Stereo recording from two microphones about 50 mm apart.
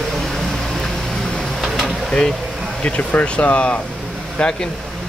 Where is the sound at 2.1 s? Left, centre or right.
Centre.